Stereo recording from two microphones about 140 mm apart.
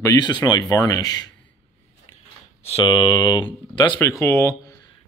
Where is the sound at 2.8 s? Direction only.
30° left (ahead or behind).